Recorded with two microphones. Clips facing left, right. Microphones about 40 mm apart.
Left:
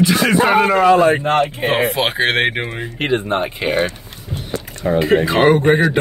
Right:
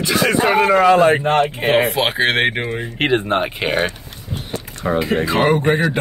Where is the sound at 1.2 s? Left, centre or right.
Centre.